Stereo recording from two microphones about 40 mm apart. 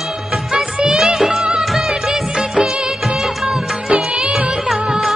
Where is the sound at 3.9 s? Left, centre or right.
Right.